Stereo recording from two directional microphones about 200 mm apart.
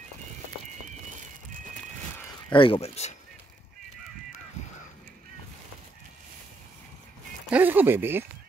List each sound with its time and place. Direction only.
2.5 s speech: 25° left (ahead or behind)
7.4 s speech: 10° right (ahead or behind)